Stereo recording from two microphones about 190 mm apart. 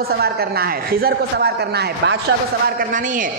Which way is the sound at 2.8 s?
45° right (ahead or behind).